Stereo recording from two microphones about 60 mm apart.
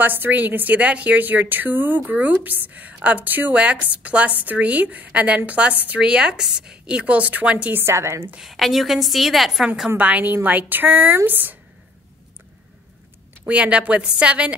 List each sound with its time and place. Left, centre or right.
0.0 s a woman's voice: right
7.7 s a woman's voice: right
8.4 s a woman's voice: centre
9.9 s a woman's voice: right
13.5 s a woman's voice: centre